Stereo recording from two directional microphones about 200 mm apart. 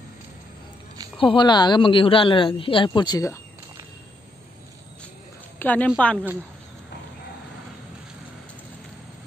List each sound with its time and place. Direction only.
1.1 s speech: 25° left (ahead or behind)
5.6 s a woman's voice: 10° left (ahead or behind)